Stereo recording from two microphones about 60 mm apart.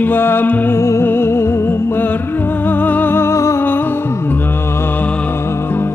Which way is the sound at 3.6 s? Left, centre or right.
Left.